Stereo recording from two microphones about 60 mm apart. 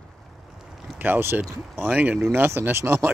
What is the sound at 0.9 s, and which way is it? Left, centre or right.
Speech, right.